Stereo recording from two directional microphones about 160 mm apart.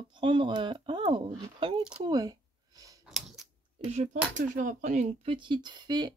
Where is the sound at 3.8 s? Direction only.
45° right (ahead or behind).